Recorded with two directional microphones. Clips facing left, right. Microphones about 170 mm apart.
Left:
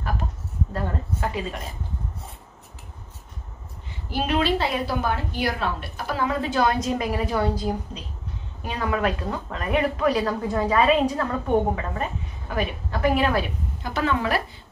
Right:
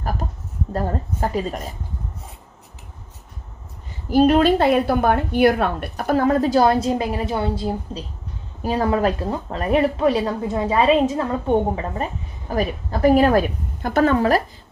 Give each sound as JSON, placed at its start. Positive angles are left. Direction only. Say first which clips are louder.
{"t": 0.7, "sound": "a woman's voice", "louder": "right 6 dB", "side_deg": -40}
{"t": 4.1, "sound": "a woman's voice", "louder": "right 9 dB", "side_deg": -45}